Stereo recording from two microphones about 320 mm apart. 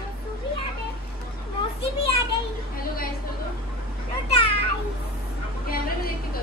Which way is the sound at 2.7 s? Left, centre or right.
Left.